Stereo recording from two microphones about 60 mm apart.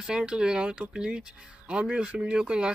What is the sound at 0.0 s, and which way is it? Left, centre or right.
Speech, centre.